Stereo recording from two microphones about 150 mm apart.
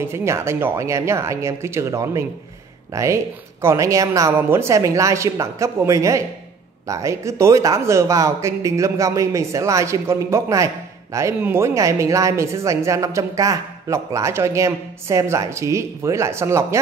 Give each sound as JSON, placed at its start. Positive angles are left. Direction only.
{"t": 0.0, "sound": "speech", "side_deg": -15}